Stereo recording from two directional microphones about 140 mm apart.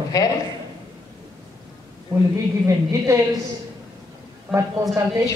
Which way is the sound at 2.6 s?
20° right (ahead or behind).